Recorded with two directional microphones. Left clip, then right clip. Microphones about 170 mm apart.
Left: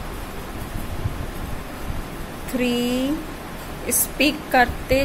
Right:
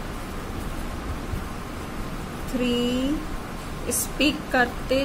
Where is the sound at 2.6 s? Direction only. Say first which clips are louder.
Left 2 dB; 20° left (ahead or behind).